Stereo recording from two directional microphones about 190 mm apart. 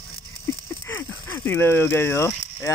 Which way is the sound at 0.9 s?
10° left (ahead or behind).